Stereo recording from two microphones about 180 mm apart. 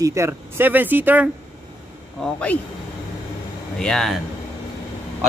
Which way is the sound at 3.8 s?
5° left (ahead or behind).